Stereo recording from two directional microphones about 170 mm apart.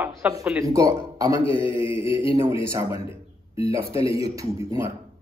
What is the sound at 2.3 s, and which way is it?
A man's voice, 15° right (ahead or behind).